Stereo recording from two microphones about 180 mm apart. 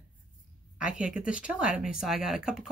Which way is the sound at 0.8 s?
5° right (ahead or behind).